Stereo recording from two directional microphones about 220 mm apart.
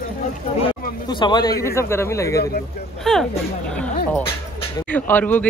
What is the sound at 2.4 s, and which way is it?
Speech, 45° left (ahead or behind).